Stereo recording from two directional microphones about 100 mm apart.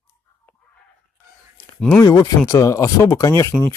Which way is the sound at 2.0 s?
35° left (ahead or behind).